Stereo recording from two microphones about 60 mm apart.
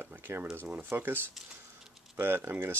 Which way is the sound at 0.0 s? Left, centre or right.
Right.